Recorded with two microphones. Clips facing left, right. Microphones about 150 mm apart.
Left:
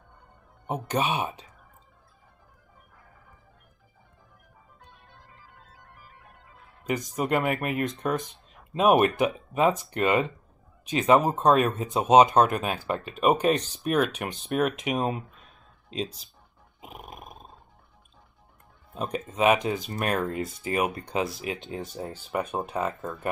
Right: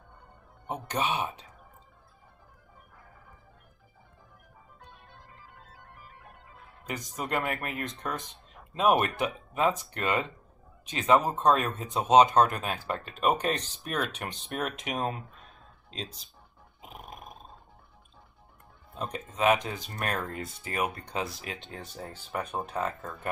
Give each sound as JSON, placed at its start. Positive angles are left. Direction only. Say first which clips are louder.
{"t": 0.7, "sound": "speech", "louder": "left 3 dB", "side_deg": 15}
{"t": 6.9, "sound": "speech", "louder": "left 7 dB", "side_deg": 20}
{"t": 16.8, "sound": "a sound", "louder": "left 2 dB", "side_deg": 5}
{"t": 18.9, "sound": "speech", "louder": "left 4 dB", "side_deg": 15}
{"t": 21.6, "sound": "speech", "louder": "left 7 dB", "side_deg": 25}